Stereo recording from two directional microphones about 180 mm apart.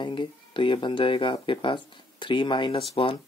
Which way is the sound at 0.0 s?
25° left (ahead or behind).